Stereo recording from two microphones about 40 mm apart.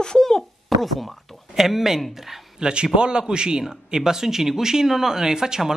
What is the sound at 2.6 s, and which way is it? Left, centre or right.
A man's voice, right.